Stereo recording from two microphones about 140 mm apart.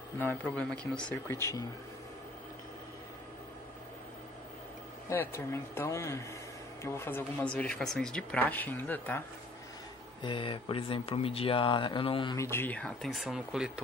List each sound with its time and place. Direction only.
0.2 s speech: 10° left (ahead or behind)
1.2 s speech: 20° left (ahead or behind)
5.1 s speech: 20° left (ahead or behind)
10.2 s speech: 40° left (ahead or behind)
12.4 s speech: 15° left (ahead or behind); by 13.7 s 5° right (ahead or behind)